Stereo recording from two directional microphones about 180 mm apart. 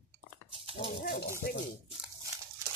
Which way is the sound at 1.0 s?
65° left (ahead or behind).